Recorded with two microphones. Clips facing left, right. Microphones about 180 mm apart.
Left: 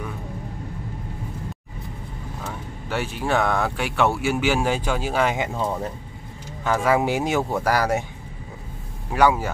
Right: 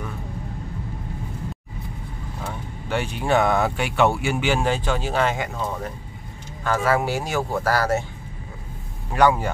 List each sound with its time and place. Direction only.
2.4 s speech: 5° left (ahead or behind)
6.6 s speech: 15° left (ahead or behind)
9.1 s speech: 5° left (ahead or behind)